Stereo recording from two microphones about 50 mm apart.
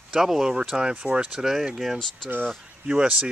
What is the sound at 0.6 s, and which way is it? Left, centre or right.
Speech, centre.